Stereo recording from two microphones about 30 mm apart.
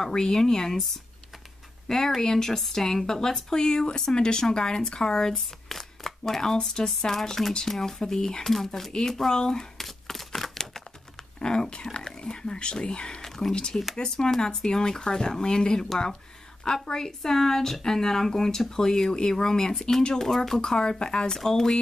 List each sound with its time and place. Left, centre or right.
0.0 s speech: left
1.9 s a woman's voice: centre
5.7 s a woman's voice: centre
8.5 s speech: centre
9.3 s speech: left
9.8 s a sound: centre
11.3 s whispering: left
13.2 s a sound: centre
13.9 s a woman's voice: left
20.2 s a woman's voice: centre
21.3 s a woman's voice: centre